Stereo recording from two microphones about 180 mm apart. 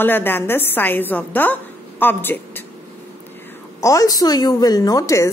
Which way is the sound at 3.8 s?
20° left (ahead or behind).